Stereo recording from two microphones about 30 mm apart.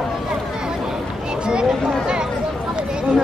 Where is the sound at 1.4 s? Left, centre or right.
Right.